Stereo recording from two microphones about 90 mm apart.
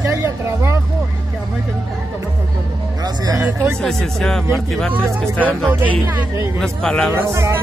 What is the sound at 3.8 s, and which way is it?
Speech, 5° left (ahead or behind).